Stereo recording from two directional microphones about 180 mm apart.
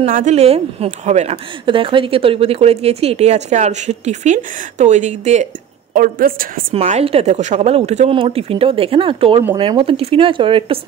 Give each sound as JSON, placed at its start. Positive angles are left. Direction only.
{"t": 0.0, "sound": "a woman's voice", "side_deg": -45}
{"t": 5.9, "sound": "a woman's voice", "side_deg": -50}
{"t": 6.7, "sound": "a woman's voice", "side_deg": -35}